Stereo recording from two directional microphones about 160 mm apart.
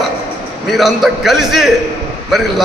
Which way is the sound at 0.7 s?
Centre (ahead or behind).